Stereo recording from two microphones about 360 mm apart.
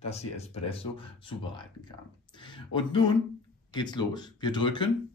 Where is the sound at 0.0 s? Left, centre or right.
Centre.